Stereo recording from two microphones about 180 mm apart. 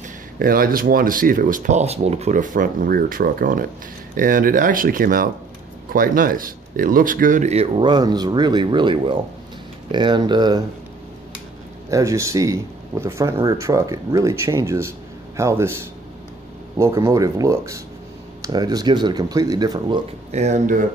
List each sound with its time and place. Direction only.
0.4 s speech: 55° right (ahead or behind); by 10.6 s 25° right (ahead or behind)
11.9 s speech: 15° right (ahead or behind)
16.7 s speech: 15° right (ahead or behind)
20.2 s speech: 40° right (ahead or behind)